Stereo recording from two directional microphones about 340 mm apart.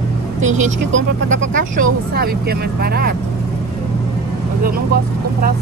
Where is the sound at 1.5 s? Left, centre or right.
Right.